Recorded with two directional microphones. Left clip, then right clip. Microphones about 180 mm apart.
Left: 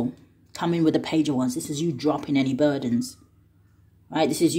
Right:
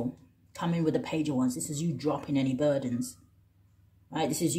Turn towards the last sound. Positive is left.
turn(degrees=40)  # may be behind; listen again after turning